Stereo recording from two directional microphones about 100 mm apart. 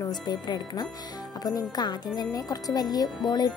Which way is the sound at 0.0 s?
45° left (ahead or behind).